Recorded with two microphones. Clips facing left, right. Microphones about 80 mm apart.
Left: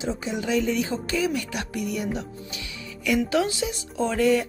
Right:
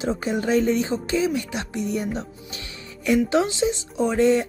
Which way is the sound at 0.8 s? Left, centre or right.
Right.